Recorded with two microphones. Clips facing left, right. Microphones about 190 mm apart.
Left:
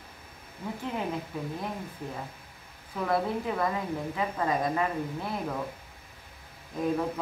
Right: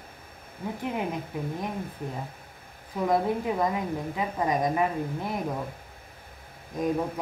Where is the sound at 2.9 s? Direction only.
15° right (ahead or behind).